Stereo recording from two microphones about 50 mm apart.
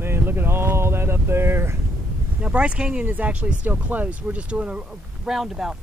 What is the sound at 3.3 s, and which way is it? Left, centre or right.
Speech, right.